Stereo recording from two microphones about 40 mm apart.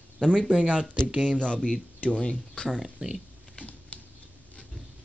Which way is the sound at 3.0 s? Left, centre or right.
Right.